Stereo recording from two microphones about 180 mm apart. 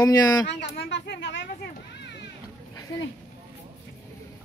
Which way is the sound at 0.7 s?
75° left (ahead or behind).